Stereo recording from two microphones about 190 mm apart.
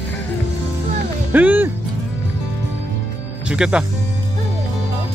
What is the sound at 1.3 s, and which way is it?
Music, 10° right (ahead or behind).